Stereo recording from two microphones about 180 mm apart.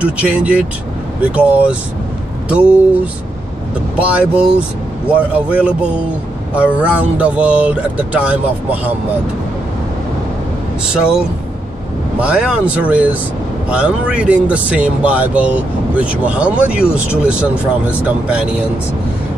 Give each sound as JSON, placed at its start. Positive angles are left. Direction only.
{"t": 0.0, "sound": "speech", "side_deg": -5}
{"t": 4.2, "sound": "speech", "side_deg": -5}
{"t": 12.2, "sound": "speech", "side_deg": -5}